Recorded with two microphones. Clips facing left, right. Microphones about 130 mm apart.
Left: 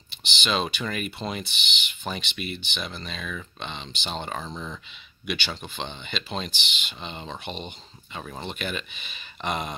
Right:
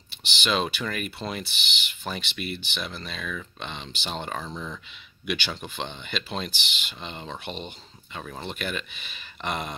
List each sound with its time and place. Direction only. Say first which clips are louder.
0.2 s speech: right 1 dB; 5° right (ahead or behind)